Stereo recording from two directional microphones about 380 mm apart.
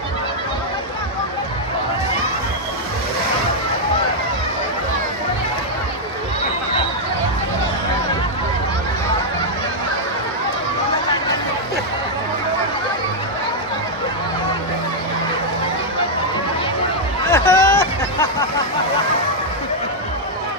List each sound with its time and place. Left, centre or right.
17.3 s vehicle: centre